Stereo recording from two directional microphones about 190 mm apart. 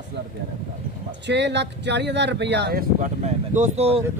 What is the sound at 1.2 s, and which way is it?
Speech, 65° right (ahead or behind).